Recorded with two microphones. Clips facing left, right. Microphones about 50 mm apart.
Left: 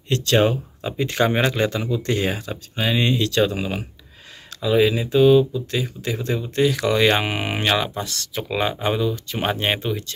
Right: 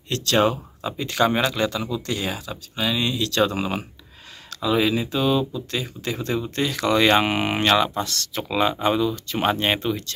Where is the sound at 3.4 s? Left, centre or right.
Centre.